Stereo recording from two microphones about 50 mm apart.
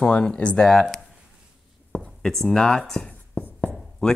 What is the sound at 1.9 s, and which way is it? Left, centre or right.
Speech, centre.